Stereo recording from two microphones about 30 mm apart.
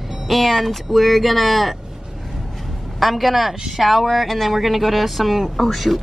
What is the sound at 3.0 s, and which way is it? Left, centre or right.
Speech, centre.